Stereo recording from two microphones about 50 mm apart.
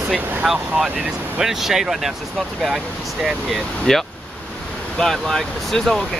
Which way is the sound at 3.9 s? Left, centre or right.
Centre.